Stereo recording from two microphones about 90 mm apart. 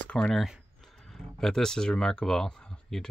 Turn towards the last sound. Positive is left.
turn(degrees=5)  # may be behind; listen again after turning